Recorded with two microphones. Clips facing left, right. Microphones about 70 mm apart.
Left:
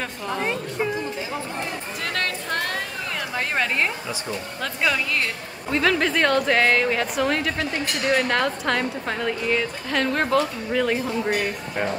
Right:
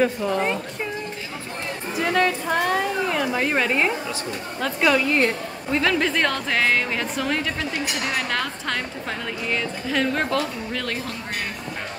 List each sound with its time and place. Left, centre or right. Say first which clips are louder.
0.0 s speech: right 6 dB; centre
2.0 s a woman's voice: right 8 dB; centre